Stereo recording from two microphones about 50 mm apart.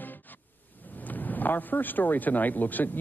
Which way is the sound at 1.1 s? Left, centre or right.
Left.